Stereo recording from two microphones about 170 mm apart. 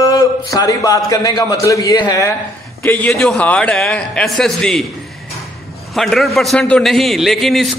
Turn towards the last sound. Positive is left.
turn(degrees=0)  # may be behind; listen again after turning